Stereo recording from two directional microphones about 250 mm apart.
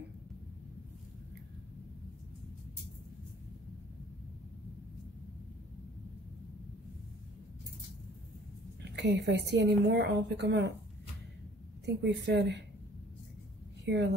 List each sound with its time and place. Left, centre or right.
8.9 s a woman's voice: right
11.8 s a woman's voice: right
13.8 s speech: right